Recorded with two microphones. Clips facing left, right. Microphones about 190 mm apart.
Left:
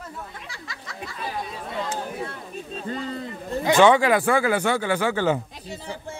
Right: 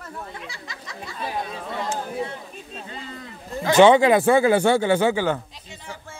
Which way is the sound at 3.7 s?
20° right (ahead or behind).